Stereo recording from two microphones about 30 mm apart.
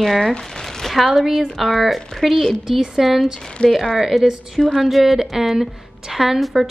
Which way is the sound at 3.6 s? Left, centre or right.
Left.